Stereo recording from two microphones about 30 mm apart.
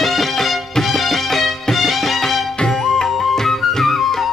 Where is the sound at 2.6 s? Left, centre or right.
Centre.